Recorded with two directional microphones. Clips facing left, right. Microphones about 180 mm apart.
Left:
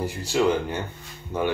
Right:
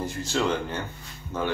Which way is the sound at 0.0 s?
10° left (ahead or behind).